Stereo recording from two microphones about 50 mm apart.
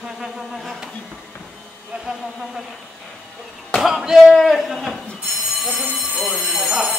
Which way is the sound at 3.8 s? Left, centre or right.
Centre.